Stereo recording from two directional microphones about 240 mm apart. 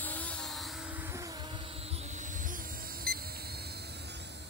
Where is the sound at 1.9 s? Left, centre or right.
Right.